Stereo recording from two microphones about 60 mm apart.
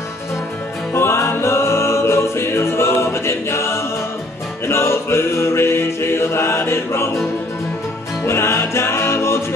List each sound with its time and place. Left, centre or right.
0.9 s music: left
8.3 s music: left